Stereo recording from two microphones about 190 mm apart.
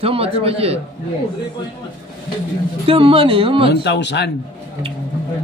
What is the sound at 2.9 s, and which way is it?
Speech, 30° right (ahead or behind).